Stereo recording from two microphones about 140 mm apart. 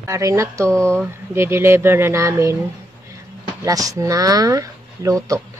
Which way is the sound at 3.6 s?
25° right (ahead or behind).